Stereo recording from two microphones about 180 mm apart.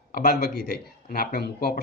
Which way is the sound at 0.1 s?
60° left (ahead or behind).